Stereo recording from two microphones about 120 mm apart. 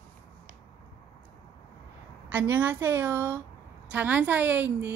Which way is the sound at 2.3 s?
15° right (ahead or behind).